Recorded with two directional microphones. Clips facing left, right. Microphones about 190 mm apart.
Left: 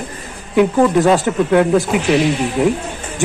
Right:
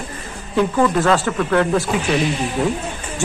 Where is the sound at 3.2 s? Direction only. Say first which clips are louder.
Left 5 dB; 15° left (ahead or behind).